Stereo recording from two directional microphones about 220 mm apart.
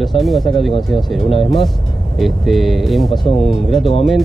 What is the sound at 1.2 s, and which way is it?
Speech, 25° left (ahead or behind).